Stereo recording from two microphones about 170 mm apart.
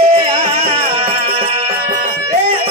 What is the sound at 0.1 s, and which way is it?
Music, 35° right (ahead or behind).